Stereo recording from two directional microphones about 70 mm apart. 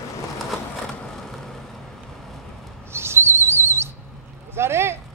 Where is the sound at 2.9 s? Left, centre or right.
Right.